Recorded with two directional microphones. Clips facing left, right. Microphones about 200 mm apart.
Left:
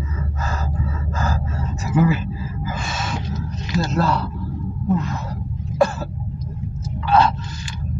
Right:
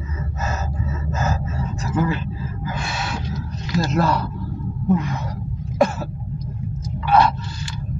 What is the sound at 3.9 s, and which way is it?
Speech, 15° right (ahead or behind).